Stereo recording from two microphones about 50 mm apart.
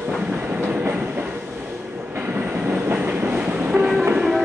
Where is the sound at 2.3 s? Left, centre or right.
Right.